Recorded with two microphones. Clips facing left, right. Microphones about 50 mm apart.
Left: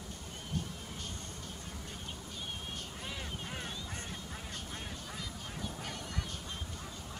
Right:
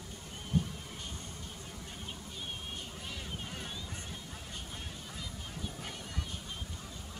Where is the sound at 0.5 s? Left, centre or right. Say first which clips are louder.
Right 7 dB; centre.